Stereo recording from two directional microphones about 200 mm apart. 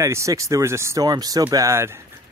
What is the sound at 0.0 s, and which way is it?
Speech, 15° right (ahead or behind).